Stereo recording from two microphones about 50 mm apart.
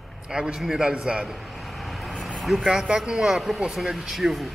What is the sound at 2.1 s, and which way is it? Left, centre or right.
Vehicle, centre.